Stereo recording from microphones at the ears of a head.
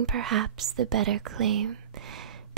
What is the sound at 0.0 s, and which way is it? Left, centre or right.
Speech, right.